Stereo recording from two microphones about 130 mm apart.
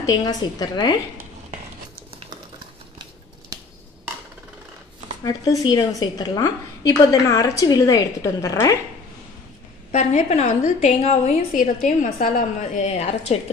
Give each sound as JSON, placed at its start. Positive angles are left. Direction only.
{"t": 0.0, "sound": "a woman's voice", "side_deg": 30}
{"t": 5.2, "sound": "a woman's voice", "side_deg": 30}
{"t": 9.9, "sound": "a woman's voice", "side_deg": 60}